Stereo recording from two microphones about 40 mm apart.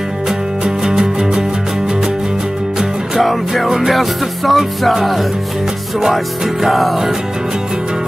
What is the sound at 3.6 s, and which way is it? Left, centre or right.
Music, centre.